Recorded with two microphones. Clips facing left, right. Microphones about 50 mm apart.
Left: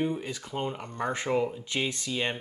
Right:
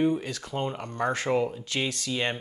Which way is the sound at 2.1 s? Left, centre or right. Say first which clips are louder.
Right 3 dB; centre.